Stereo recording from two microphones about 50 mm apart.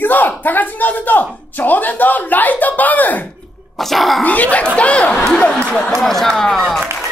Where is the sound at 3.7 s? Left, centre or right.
Centre.